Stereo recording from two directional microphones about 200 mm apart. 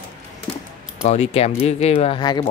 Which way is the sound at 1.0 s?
35° left (ahead or behind).